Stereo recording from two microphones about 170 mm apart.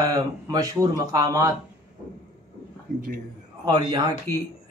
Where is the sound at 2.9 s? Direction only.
50° right (ahead or behind).